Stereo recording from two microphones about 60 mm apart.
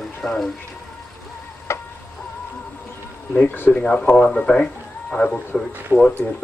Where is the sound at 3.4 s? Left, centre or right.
Left.